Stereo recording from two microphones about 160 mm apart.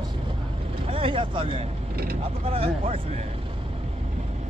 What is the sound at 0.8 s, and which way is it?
Speech, 35° right (ahead or behind).